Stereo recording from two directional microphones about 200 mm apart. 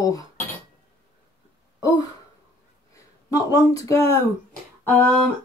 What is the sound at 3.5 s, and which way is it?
Speech, 15° left (ahead or behind).